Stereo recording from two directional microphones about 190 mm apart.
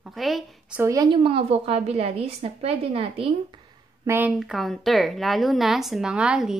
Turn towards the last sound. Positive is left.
turn(degrees=-5)  # may be behind; listen again after turning